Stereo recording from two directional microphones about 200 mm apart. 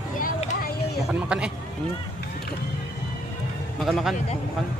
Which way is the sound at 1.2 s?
5° right (ahead or behind).